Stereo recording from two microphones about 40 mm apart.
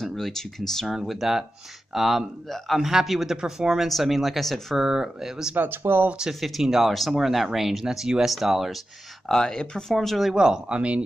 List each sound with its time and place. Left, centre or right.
0.0 s speech: centre
0.8 s speech: centre
4.7 s speech: centre
5.6 s speech: right
6.4 s speech: centre
6.9 s speech: centre
7.2 s speech: centre
9.3 s speech: centre
9.9 s speech: centre
10.3 s speech: centre